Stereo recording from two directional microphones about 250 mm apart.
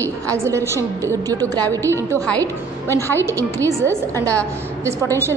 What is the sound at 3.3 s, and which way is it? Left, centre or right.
Speech, centre.